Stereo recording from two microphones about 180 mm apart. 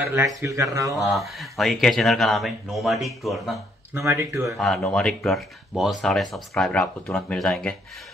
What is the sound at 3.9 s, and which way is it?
Speech, 15° right (ahead or behind).